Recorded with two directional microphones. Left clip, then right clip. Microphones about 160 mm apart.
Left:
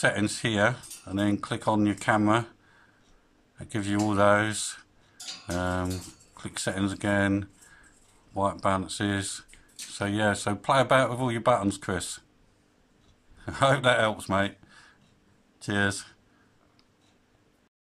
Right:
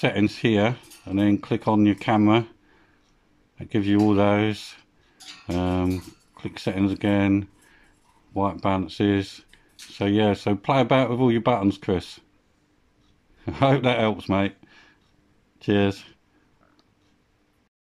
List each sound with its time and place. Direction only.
0.0 s speech: 15° right (ahead or behind)
3.5 s speech: 15° right (ahead or behind)
13.4 s speech: 15° right (ahead or behind)